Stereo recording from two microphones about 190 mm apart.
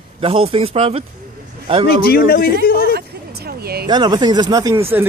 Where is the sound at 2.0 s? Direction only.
55° left (ahead or behind).